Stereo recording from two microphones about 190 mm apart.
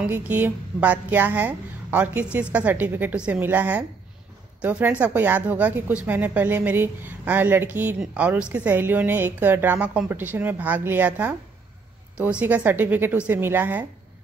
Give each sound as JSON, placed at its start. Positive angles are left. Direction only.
{"t": 0.0, "sound": "speech", "side_deg": -10}